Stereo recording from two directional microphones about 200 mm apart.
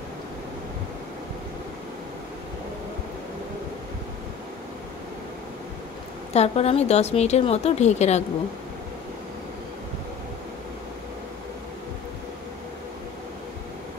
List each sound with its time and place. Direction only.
6.3 s a woman's voice: 30° left (ahead or behind)